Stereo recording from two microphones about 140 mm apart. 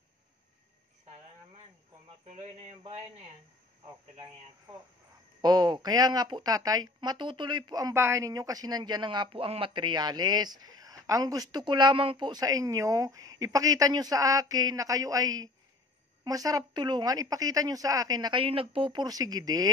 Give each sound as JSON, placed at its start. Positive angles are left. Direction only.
{"t": 2.2, "sound": "speech", "side_deg": -55}
{"t": 5.4, "sound": "speech", "side_deg": -30}
{"t": 18.4, "sound": "speech", "side_deg": -40}